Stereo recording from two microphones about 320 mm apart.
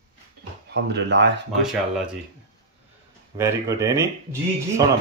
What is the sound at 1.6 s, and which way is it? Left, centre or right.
Speech, centre.